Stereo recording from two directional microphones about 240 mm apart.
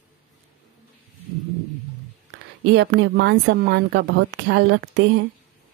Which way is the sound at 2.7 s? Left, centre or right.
Right.